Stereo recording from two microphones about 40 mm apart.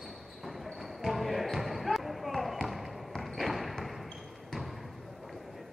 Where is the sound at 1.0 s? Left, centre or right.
Centre.